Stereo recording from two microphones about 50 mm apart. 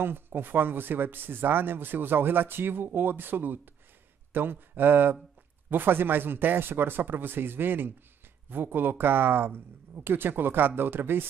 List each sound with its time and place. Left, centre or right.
0.0 s speech: right